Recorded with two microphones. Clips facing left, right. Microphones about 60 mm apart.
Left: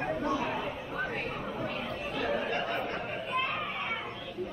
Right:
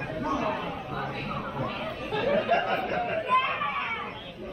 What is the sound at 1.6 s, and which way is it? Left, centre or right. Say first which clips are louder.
Chatter: right 2 dB; right.